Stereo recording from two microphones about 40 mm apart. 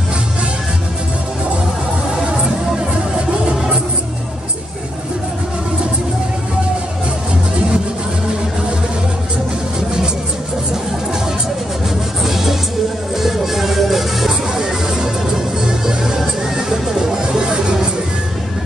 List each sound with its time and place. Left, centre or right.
2.2 s music: right
12.2 s music: centre
14.6 s music: centre